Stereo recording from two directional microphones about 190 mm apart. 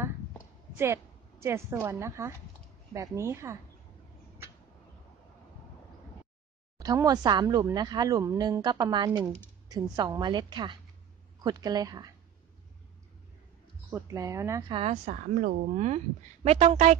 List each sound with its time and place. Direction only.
0.7 s a woman's voice: 15° right (ahead or behind)
6.8 s speech: 20° right (ahead or behind)
13.8 s speech: 15° right (ahead or behind)
14.7 s a woman's voice: 35° right (ahead or behind)